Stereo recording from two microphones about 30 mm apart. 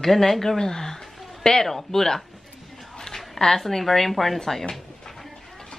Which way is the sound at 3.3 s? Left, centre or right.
Centre.